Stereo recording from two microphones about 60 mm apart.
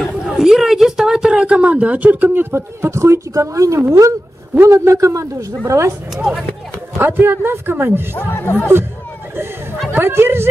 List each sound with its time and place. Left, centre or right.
0.0 s a man's voice: centre; by 5.5 s right
5.7 s speech: right
6.1 s speech: centre
7.0 s a woman's voice: right
8.2 s speech: left
9.8 s a woman's voice: right